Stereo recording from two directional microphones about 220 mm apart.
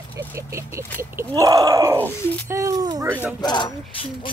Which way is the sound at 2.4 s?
15° right (ahead or behind).